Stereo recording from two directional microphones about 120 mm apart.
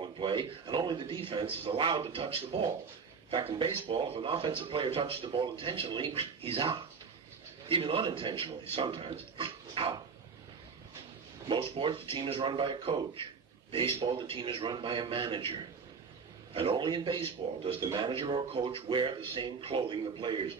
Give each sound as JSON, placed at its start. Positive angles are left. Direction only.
{"t": 0.0, "sound": "a man's voice", "side_deg": -45}
{"t": 11.4, "sound": "speech", "side_deg": -45}
{"t": 16.5, "sound": "speech", "side_deg": -45}